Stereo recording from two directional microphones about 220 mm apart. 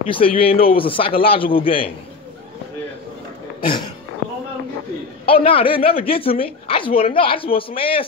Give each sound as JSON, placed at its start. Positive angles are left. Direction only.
{"t": 0.1, "sound": "a man's voice", "side_deg": 25}
{"t": 3.6, "sound": "speech", "side_deg": 20}
{"t": 5.2, "sound": "a man's voice", "side_deg": 25}